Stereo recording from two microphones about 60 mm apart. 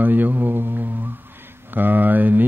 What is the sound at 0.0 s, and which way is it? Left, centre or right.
Mantra, right.